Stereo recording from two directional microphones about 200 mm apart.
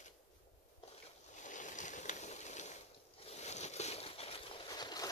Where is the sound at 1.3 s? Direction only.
40° left (ahead or behind).